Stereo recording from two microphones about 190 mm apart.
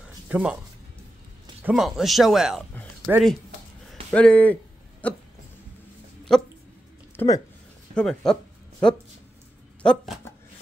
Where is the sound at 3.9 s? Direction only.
5° left (ahead or behind).